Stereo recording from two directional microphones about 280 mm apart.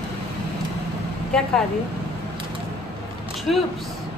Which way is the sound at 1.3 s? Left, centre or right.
Centre.